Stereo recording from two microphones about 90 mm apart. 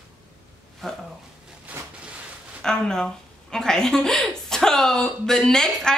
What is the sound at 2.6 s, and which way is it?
A woman's voice, 5° left (ahead or behind).